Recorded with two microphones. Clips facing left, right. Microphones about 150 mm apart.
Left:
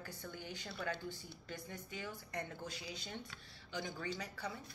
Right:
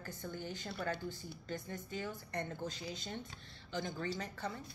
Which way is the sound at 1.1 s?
15° left (ahead or behind).